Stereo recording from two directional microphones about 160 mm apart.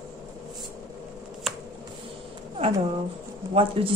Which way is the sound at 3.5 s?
35° right (ahead or behind).